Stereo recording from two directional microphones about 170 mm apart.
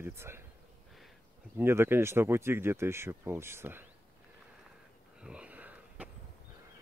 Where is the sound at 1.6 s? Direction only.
15° right (ahead or behind).